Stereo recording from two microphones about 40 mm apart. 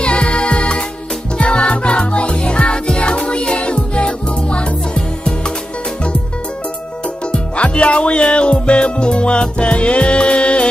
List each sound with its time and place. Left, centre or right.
0.0 s music: left
7.5 s music: left